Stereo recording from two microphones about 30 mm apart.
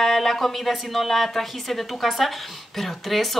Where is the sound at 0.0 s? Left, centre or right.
Centre.